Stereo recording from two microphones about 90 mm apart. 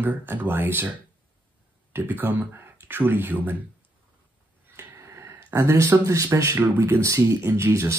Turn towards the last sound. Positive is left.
turn(degrees=-30)  # may be behind; listen again after turning